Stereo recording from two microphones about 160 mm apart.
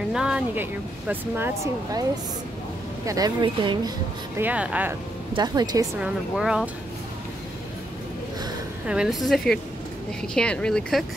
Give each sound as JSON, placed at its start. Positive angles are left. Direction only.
{"t": 0.1, "sound": "speech", "side_deg": -5}
{"t": 3.1, "sound": "speech", "side_deg": -25}
{"t": 4.4, "sound": "speech", "side_deg": -10}
{"t": 5.3, "sound": "speech", "side_deg": -25}
{"t": 5.9, "sound": "speech", "side_deg": -5}
{"t": 8.8, "sound": "speech", "side_deg": -5}